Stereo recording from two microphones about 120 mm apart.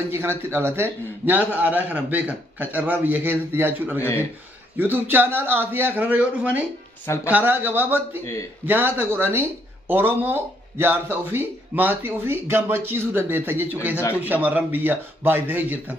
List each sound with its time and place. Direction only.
0.1 s speech: 20° right (ahead or behind)
4.0 s speech: 20° left (ahead or behind)
4.7 s speech: 15° right (ahead or behind)